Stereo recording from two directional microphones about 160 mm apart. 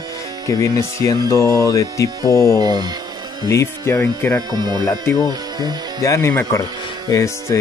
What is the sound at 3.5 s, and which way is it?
Speech, 15° left (ahead or behind).